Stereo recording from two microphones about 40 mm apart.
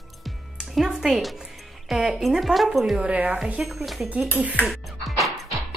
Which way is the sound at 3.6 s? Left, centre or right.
Right.